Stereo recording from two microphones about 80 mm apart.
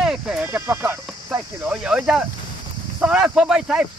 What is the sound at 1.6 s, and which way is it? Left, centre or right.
Speech, centre.